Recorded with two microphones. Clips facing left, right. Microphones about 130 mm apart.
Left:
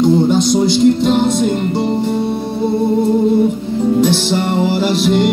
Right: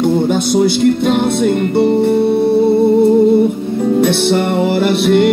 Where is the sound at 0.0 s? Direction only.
60° right (ahead or behind).